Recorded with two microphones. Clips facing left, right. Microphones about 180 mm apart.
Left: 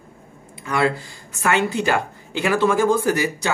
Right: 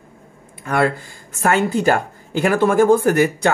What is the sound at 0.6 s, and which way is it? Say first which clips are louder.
Speech: right 2 dB; 50° right (ahead or behind).